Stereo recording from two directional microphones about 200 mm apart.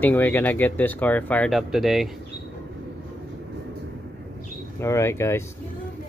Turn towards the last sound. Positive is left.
turn(degrees=15)  # may be behind; listen again after turning